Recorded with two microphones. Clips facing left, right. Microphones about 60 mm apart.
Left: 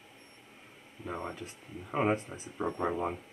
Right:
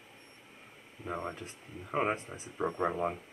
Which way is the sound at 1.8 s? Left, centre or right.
Centre.